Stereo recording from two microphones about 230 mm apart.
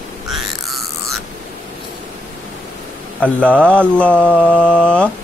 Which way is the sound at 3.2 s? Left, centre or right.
Centre.